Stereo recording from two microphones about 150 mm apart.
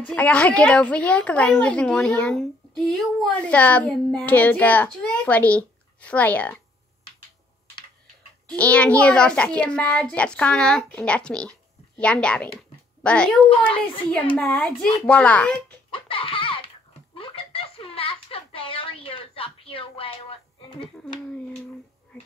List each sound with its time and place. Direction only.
0.0 s a woman's voice: 10° left (ahead or behind)
8.5 s a woman's voice: 10° left (ahead or behind)
15.9 s a sound: 35° left (ahead or behind)